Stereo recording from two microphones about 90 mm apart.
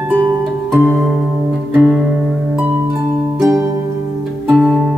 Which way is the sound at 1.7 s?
10° right (ahead or behind).